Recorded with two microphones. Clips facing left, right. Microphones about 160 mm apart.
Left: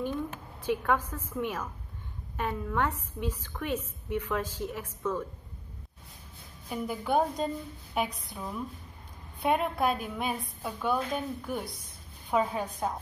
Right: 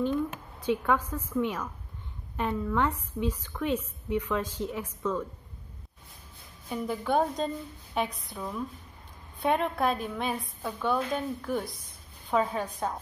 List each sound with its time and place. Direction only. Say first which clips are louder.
0.7 s a woman's voice: right 2 dB; 10° left (ahead or behind)
6.7 s a woman's voice: right 1 dB; 5° left (ahead or behind)